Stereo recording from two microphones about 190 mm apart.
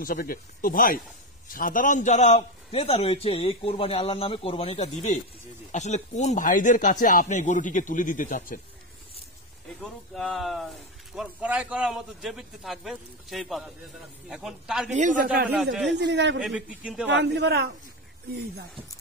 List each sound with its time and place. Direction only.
0.0 s a man's voice: 50° left (ahead or behind)
9.8 s speech: 5° left (ahead or behind)
14.9 s a man's voice: 40° right (ahead or behind)
15.5 s speech: centre (ahead or behind)
16.0 s speech: 65° right (ahead or behind)
16.4 s speech: 5° right (ahead or behind)
17.1 s a man's voice: 65° right (ahead or behind)